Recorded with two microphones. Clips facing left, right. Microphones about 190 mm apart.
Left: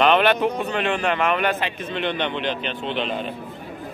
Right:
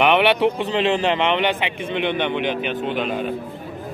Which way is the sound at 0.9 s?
25° right (ahead or behind).